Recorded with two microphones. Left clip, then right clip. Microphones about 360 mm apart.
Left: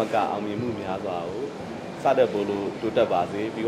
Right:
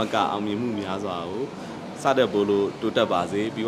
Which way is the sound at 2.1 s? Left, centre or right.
Right.